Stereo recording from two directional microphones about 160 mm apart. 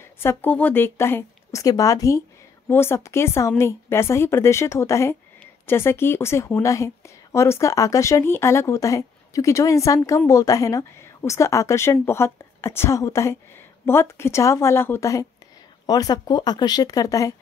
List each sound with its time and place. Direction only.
0.2 s a woman's voice: 15° left (ahead or behind)